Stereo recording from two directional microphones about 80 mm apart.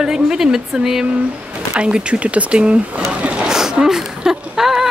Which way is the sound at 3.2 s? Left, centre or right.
Centre.